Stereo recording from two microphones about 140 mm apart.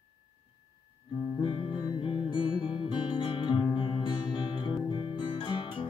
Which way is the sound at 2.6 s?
40° left (ahead or behind).